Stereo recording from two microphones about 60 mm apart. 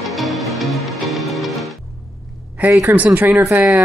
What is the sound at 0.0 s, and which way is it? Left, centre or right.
Music, centre.